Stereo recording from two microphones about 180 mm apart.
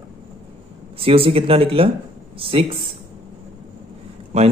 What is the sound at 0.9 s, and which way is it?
A man's voice, 30° right (ahead or behind).